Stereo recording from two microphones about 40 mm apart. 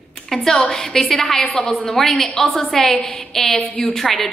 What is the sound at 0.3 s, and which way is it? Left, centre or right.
A woman's voice, centre.